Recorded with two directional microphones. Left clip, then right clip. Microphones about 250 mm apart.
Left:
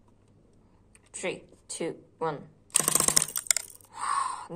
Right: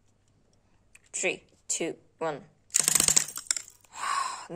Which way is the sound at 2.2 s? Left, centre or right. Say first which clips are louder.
Left 1 dB; right.